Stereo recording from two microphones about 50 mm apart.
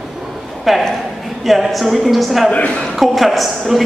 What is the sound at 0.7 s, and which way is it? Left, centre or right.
A man's voice, centre.